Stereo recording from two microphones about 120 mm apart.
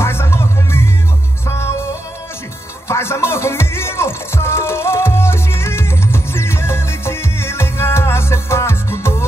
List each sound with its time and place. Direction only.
0.0 s music: 20° left (ahead or behind)
2.9 s music: 20° left (ahead or behind)